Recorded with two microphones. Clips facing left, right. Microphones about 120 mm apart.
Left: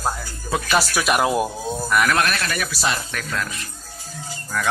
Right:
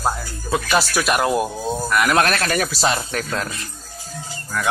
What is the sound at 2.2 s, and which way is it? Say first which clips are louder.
Speech: right 4 dB; 45° right (ahead or behind).